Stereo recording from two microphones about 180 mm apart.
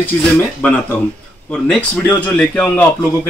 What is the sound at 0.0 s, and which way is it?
A man's voice, 10° left (ahead or behind).